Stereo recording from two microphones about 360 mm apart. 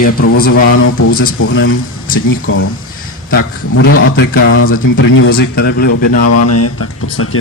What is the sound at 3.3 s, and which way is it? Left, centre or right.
Speech, left.